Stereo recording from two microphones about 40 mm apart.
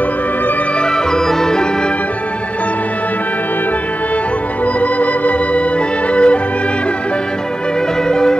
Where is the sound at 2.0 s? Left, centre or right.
Left.